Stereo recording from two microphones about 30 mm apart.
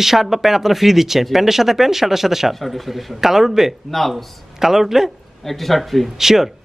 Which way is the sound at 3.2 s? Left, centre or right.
Centre.